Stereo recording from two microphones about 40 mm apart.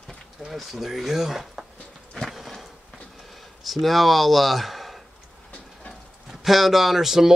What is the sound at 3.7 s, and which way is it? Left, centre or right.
Speech, centre.